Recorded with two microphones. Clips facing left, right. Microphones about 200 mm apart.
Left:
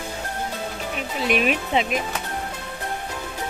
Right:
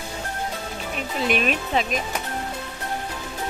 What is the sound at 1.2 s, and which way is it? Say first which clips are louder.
Speech: left 2 dB; 5° left (ahead or behind).